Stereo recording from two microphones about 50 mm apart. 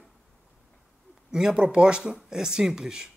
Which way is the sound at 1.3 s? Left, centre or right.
Centre.